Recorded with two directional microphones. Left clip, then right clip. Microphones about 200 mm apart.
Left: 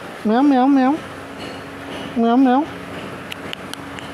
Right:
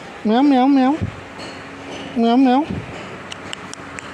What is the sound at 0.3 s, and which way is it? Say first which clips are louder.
Speech: even; 10° right (ahead or behind).